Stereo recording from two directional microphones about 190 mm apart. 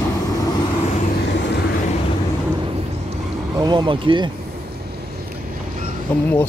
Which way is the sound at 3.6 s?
25° right (ahead or behind).